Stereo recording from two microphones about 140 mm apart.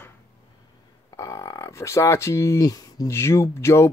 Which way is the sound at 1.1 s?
20° left (ahead or behind).